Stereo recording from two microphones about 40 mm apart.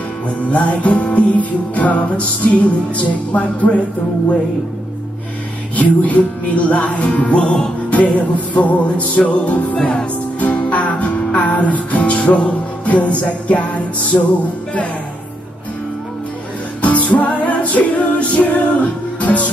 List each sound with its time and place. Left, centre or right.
0.5 s music: left
5.8 s music: left
14.1 s music: left
16.8 s music: left